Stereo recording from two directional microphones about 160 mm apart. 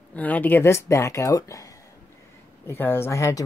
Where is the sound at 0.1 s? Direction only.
10° left (ahead or behind).